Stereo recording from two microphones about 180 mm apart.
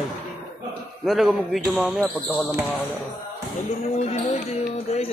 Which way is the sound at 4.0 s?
35° left (ahead or behind).